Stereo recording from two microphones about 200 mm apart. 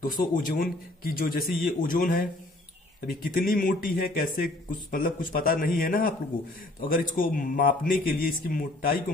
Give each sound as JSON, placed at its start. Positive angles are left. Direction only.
{"t": 0.0, "sound": "speech", "side_deg": 45}